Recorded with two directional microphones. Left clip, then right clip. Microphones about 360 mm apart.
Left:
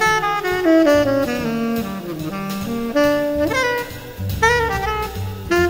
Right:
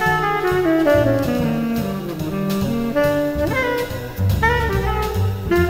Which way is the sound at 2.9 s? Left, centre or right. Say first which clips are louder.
Left 2 dB; left.